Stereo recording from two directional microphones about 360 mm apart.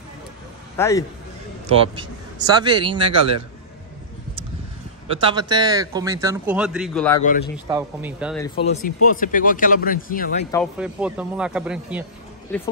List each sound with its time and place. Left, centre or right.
0.7 s a man's voice: centre
1.7 s speech: centre
5.1 s speech: centre
7.2 s speech: left
7.6 s speech: centre
8.6 s speech: left
10.5 s speech: centre